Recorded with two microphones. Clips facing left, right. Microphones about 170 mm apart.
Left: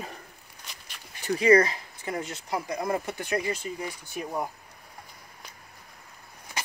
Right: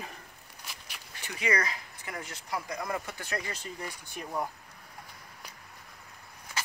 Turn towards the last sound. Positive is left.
turn(degrees=15)  # may be behind; listen again after turning